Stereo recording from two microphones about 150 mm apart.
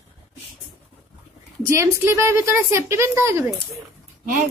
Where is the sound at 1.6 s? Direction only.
20° right (ahead or behind).